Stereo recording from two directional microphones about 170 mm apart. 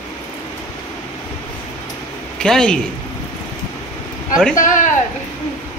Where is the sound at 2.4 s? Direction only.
5° left (ahead or behind).